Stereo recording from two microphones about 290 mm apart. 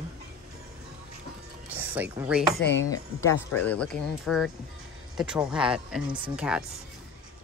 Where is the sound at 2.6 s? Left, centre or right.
Left.